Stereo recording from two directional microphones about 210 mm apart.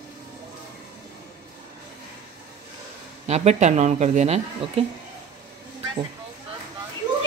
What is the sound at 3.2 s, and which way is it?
Speech, 30° right (ahead or behind).